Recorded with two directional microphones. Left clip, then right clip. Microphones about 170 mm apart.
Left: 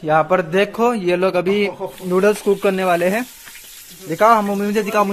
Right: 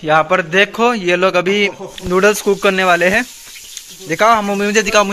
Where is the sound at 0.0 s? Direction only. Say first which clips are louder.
Right 3 dB; 5° left (ahead or behind).